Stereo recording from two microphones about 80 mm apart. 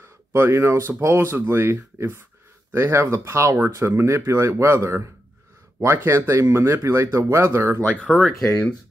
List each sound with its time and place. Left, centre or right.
0.0 s speech: right
8.0 s speech: centre
8.5 s speech: centre